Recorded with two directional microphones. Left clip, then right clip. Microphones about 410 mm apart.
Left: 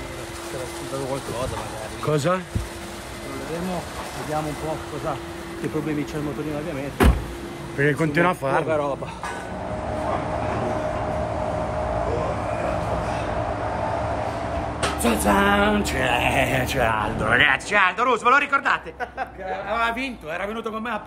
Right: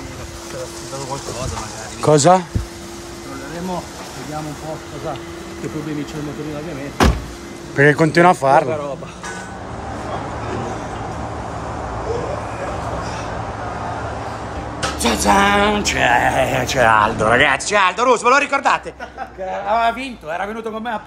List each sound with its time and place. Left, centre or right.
2.0 s speech: centre
7.7 s speech: centre
15.0 s music: centre
15.8 s speech: centre
16.8 s music: right
17.3 s a man's voice: centre